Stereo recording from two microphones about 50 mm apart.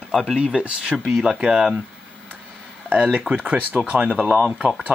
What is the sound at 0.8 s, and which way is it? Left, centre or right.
Speech, centre.